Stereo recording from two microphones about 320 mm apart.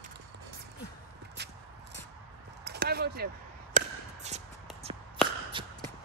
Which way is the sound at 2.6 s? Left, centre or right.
Right.